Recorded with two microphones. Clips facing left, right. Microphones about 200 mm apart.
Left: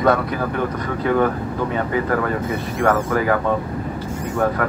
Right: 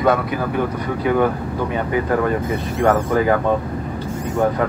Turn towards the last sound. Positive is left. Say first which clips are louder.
# right 2 dB
turn(degrees=-25)  # may be behind; listen again after turning